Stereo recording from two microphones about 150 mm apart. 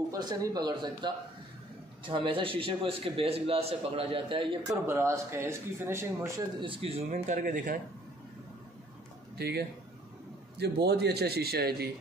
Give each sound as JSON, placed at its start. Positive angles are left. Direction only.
{"t": 0.1, "sound": "a man's voice", "side_deg": -25}
{"t": 4.8, "sound": "speech", "side_deg": -15}
{"t": 6.6, "sound": "a man's voice", "side_deg": -40}
{"t": 7.1, "sound": "a man's voice", "side_deg": -60}
{"t": 9.4, "sound": "speech", "side_deg": -90}